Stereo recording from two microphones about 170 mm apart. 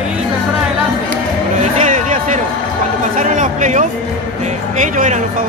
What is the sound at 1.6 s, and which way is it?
Music, 45° right (ahead or behind).